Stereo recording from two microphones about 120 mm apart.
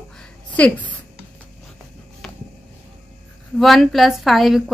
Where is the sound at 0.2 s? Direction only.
10° left (ahead or behind).